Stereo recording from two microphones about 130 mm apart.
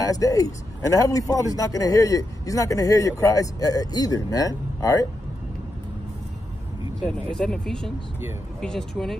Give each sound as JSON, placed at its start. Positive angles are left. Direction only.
{"t": 0.0, "sound": "a man's voice", "side_deg": 25}
{"t": 7.0, "sound": "speech", "side_deg": 5}